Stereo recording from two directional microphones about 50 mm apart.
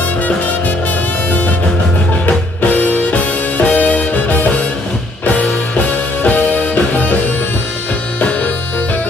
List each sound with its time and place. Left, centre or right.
2.2 s music: left
8.2 s music: left